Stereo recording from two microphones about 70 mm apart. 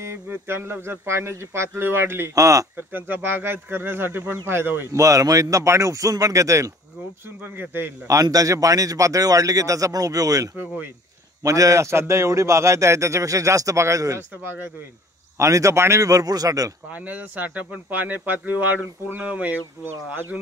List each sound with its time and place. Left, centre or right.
0.0 s speech: right
2.3 s a man's voice: right
2.9 s speech: right
4.9 s a man's voice: right
7.4 s speech: right
8.1 s a man's voice: right
15.3 s a man's voice: right
16.1 s speech: right
16.9 s speech: right
19.8 s speech: right